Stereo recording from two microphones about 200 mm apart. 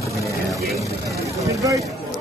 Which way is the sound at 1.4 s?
15° right (ahead or behind).